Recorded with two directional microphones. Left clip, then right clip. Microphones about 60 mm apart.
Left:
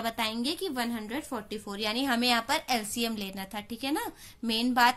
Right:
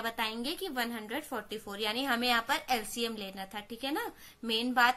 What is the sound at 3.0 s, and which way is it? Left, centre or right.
A woman's voice, left.